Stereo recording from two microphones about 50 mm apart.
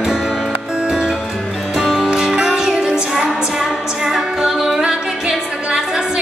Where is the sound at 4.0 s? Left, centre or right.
Centre.